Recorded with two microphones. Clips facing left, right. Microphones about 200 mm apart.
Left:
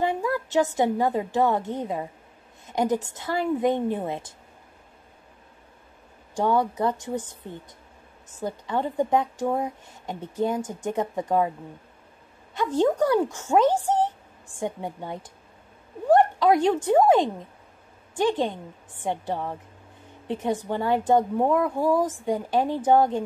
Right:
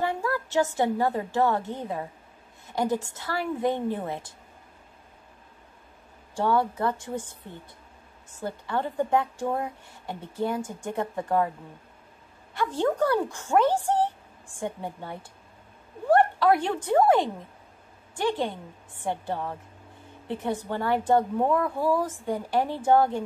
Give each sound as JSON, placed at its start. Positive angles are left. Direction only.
{"t": 0.0, "sound": "a woman's voice", "side_deg": 15}
{"t": 2.6, "sound": "a sound", "side_deg": 20}
{"t": 3.1, "sound": "a woman's voice", "side_deg": 20}
{"t": 6.3, "sound": "a woman's voice", "side_deg": 15}
{"t": 8.4, "sound": "a woman's voice", "side_deg": 15}
{"t": 12.5, "sound": "a woman's voice", "side_deg": 15}